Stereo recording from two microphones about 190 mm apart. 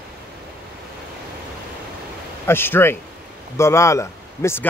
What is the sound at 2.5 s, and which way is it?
A man's voice, 10° left (ahead or behind).